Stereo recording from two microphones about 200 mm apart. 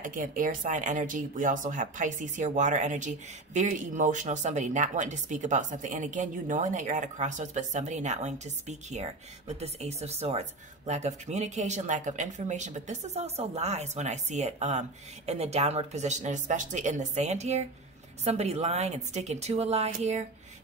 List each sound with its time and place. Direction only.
0.0 s speech: 45° right (ahead or behind)